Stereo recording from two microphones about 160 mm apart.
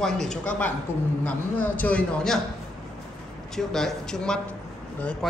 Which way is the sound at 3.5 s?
5° left (ahead or behind).